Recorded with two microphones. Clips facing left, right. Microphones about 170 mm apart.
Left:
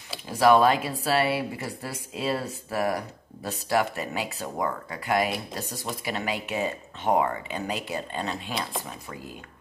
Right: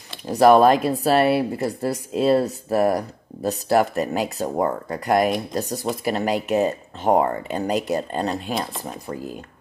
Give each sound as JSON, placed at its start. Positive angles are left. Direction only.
{"t": 0.3, "sound": "speech", "side_deg": -45}